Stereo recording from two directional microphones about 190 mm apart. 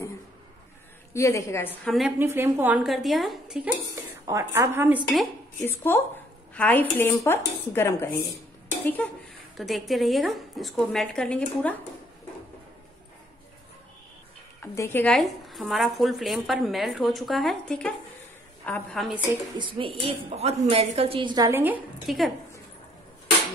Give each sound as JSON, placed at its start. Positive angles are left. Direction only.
{"t": 1.1, "sound": "dishes", "side_deg": 15}
{"t": 1.9, "sound": "speech", "side_deg": -5}
{"t": 3.9, "sound": "speech", "side_deg": -15}
{"t": 5.6, "sound": "dishes", "side_deg": 10}
{"t": 9.6, "sound": "speech", "side_deg": 0}
{"t": 14.6, "sound": "speech", "side_deg": 10}
{"t": 20.0, "sound": "a woman's voice", "side_deg": -35}
{"t": 21.5, "sound": "a woman's voice", "side_deg": -10}